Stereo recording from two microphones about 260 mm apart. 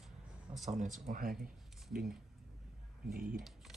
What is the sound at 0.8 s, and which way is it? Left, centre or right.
Speech, right.